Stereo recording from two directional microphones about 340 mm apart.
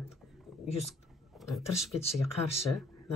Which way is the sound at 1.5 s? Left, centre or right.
Centre.